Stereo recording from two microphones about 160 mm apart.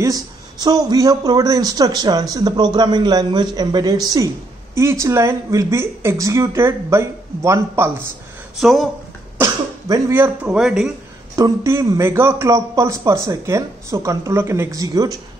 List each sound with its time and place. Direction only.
0.0 s a man's voice: 25° right (ahead or behind)
8.5 s speech: centre (ahead or behind)
9.4 s speech: 20° right (ahead or behind)
11.3 s a man's voice: 20° right (ahead or behind)